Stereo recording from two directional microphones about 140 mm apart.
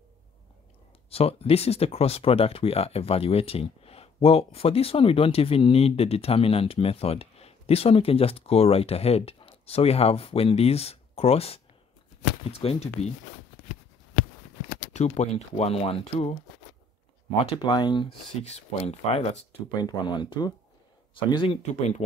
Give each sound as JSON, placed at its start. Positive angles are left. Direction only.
{"t": 1.1, "sound": "speech", "side_deg": 45}
{"t": 14.9, "sound": "speech", "side_deg": 55}
{"t": 17.5, "sound": "speech", "side_deg": 35}
{"t": 18.4, "sound": "speech", "side_deg": 50}
{"t": 19.7, "sound": "speech", "side_deg": 30}